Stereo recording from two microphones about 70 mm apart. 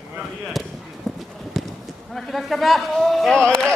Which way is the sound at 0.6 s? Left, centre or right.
Centre.